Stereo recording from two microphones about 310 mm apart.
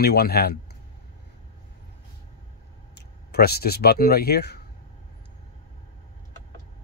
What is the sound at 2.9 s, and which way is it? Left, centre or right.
Speech, left.